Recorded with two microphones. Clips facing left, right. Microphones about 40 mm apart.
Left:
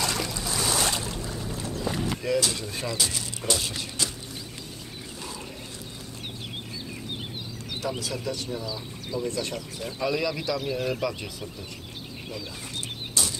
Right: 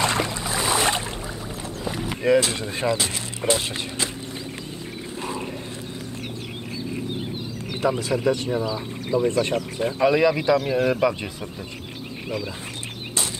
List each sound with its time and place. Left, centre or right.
0.0 s a sound: right
1.9 s vehicle: centre
2.2 s speech: right
8.0 s speech: right